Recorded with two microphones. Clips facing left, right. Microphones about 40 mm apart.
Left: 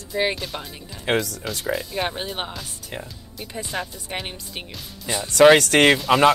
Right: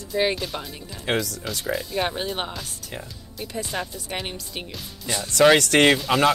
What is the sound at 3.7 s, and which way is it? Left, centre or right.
Speech, centre.